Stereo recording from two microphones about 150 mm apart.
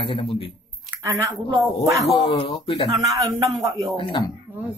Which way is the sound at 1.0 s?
20° right (ahead or behind).